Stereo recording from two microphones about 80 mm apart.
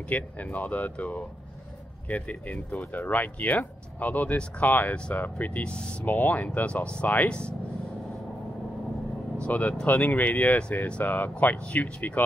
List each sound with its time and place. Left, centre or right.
0.1 s speech: centre
9.4 s speech: centre